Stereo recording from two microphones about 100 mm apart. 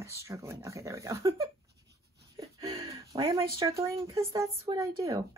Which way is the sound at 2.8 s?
35° right (ahead or behind).